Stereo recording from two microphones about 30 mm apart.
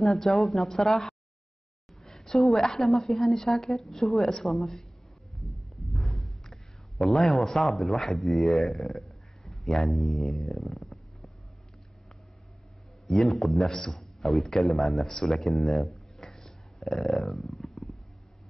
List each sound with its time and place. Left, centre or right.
0.0 s speech: centre
2.0 s a woman's voice: centre
6.2 s a man's voice: centre
13.2 s a man's voice: centre
13.9 s a sound: centre
14.4 s a man's voice: centre
14.7 s speech: centre
16.2 s a sound: centre
16.8 s a man's voice: centre